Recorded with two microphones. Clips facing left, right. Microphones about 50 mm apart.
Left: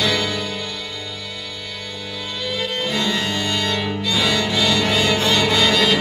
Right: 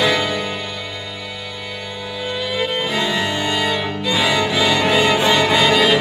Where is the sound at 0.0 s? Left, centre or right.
Centre.